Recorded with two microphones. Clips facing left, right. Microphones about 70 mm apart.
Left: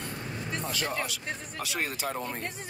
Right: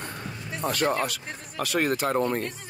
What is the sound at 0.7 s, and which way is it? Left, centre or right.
Speech, right.